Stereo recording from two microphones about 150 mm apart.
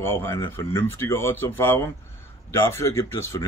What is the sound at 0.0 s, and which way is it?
Speech, 15° left (ahead or behind).